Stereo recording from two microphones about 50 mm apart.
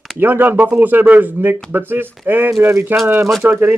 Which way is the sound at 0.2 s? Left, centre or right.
Right.